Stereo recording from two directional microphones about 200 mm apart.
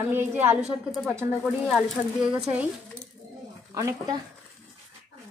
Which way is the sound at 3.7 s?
15° right (ahead or behind).